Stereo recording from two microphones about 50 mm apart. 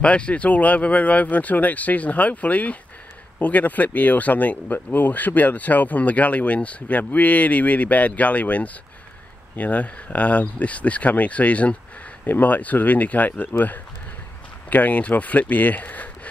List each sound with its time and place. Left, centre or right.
0.0 s speech: left